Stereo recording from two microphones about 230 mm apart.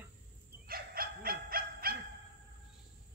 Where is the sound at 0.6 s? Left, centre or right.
Right.